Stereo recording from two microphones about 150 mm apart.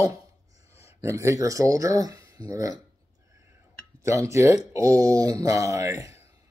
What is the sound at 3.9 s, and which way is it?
Speech, 20° right (ahead or behind).